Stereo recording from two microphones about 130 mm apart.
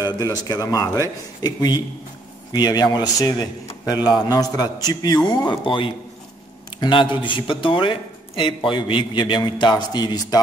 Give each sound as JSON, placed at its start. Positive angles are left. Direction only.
{"t": 0.2, "sound": "a man's voice", "side_deg": 30}